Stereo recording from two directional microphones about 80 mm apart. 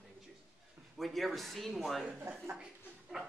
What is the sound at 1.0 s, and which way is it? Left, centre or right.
Speech, centre.